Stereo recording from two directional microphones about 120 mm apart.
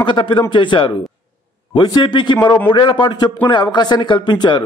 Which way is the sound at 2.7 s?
40° left (ahead or behind).